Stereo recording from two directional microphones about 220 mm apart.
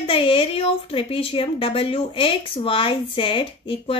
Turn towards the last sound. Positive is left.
turn(degrees=25)  # may be behind; listen again after turning